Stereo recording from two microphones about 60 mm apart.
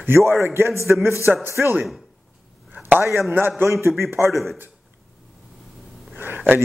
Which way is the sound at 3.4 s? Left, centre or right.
Right.